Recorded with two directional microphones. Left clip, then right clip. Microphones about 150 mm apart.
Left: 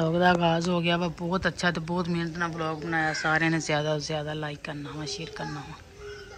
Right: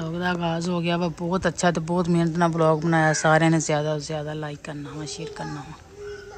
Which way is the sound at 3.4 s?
15° right (ahead or behind).